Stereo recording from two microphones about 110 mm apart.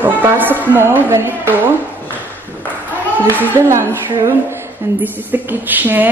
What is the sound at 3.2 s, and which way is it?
A woman's voice, 15° right (ahead or behind).